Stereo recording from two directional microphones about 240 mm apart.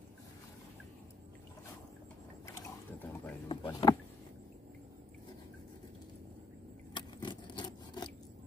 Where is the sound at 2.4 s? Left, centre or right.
Centre.